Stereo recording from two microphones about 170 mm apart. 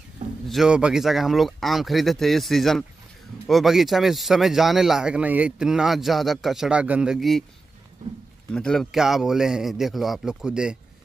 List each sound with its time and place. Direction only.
0.5 s speech: 5° right (ahead or behind)
8.5 s speech: 5° left (ahead or behind)